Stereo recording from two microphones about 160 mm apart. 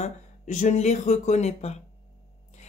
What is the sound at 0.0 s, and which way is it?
Speech, 50° left (ahead or behind).